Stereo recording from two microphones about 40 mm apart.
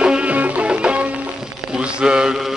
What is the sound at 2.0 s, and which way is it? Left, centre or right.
Mantra, right.